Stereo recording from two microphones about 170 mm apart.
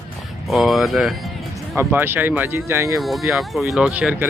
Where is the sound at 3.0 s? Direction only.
Centre (ahead or behind).